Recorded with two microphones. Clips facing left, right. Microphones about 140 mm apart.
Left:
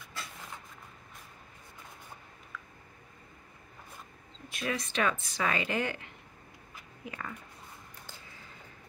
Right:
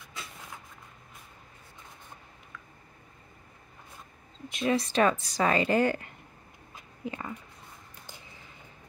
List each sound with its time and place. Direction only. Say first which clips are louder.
4.5 s speech: right 7 dB; 20° right (ahead or behind)
4.7 s a woman's voice: right 7 dB; 35° right (ahead or behind)
6.7 s a sound: right 7 dB; 20° right (ahead or behind)